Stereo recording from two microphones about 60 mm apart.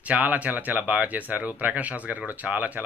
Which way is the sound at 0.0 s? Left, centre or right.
Right.